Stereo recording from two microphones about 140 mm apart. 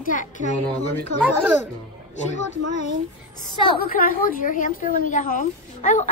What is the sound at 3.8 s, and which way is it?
Speech, 90° left.